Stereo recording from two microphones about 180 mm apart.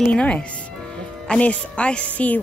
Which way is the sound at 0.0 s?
5° left (ahead or behind).